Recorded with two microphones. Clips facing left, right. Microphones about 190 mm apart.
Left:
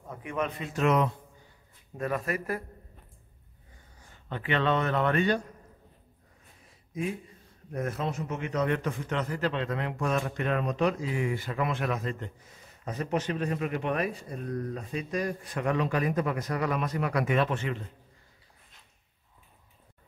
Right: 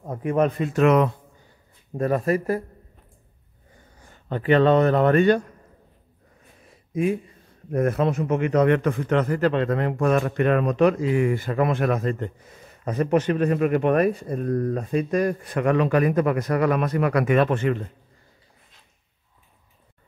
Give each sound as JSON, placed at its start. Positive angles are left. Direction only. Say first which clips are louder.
{"t": 0.0, "sound": "speech", "louder": "right 11 dB", "side_deg": -40}
{"t": 0.7, "sound": "a man's voice", "louder": "right 7 dB", "side_deg": -65}
{"t": 2.0, "sound": "speech", "louder": "right 9 dB", "side_deg": -35}
{"t": 4.3, "sound": "speech", "louder": "right 10 dB", "side_deg": -40}
{"t": 6.9, "sound": "a man's voice", "louder": "right 10 dB", "side_deg": -65}